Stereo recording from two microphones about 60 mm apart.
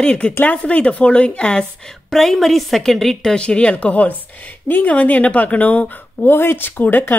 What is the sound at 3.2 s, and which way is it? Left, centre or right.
A woman's voice, centre.